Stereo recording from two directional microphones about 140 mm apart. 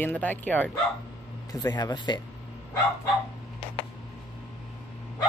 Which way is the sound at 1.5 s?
30° left (ahead or behind).